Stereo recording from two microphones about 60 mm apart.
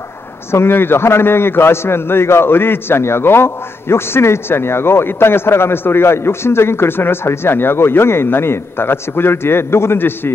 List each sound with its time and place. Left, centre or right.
0.5 s a man's voice: left